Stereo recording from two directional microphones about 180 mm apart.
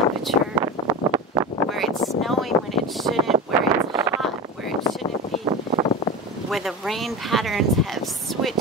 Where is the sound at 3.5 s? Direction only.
20° right (ahead or behind).